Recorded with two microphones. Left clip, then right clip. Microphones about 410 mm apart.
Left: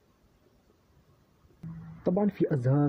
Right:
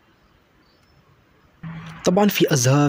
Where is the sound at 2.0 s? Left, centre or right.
Left.